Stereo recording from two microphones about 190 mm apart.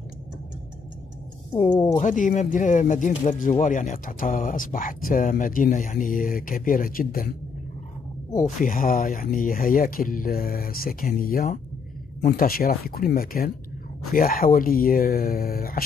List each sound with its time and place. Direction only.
1.6 s speech: 25° left (ahead or behind)
2.0 s speech: 40° left (ahead or behind)
8.6 s speech: 45° left (ahead or behind)